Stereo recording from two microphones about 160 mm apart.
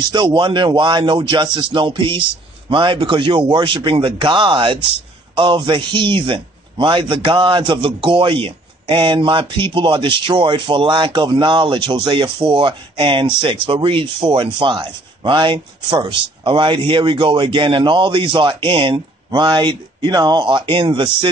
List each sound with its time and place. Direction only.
0.1 s speech: 30° right (ahead or behind)